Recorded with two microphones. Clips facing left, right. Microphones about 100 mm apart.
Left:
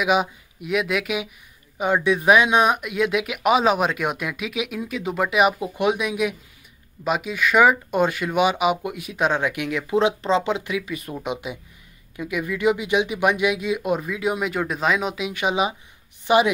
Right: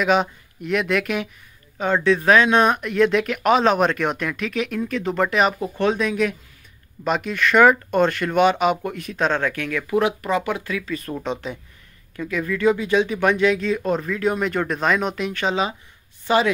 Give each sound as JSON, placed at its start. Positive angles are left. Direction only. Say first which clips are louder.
{"t": 0.0, "sound": "speech", "louder": "right 2 dB", "side_deg": 10}